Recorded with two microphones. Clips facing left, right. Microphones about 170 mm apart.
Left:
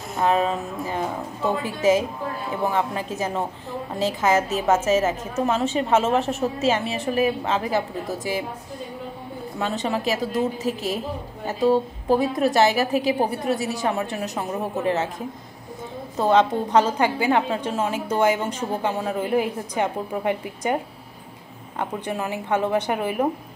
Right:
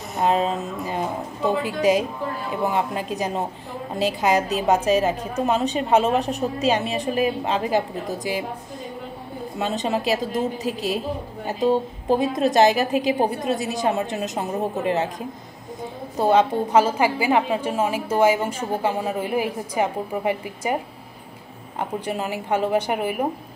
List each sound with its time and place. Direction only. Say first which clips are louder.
0.2 s a woman's voice: even; 20° right (ahead or behind)
9.6 s a woman's voice: right 1 dB; 20° right (ahead or behind)
11.4 s a woman's voice: left 1 dB; 20° right (ahead or behind)
21.7 s a woman's voice: right 1 dB; 15° right (ahead or behind)